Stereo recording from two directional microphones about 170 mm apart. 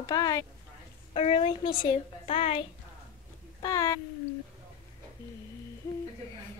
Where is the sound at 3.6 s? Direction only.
20° left (ahead or behind).